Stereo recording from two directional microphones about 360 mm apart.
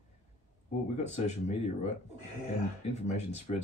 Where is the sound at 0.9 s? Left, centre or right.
Centre.